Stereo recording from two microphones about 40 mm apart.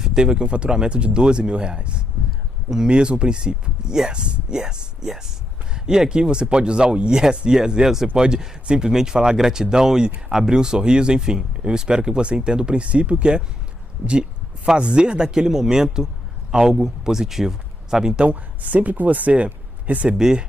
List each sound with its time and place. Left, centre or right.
0.0 s speech: centre
18.2 s speech: right
20.2 s speech: centre